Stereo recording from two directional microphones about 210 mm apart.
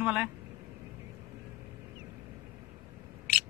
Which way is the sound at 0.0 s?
5° right (ahead or behind).